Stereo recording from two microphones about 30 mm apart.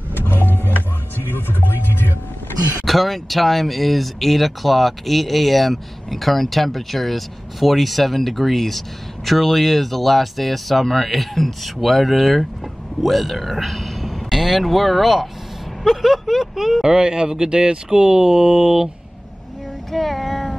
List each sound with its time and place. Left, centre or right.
0.7 s music: left
2.8 s a man's voice: centre
16.8 s speech: right
19.9 s child singing: centre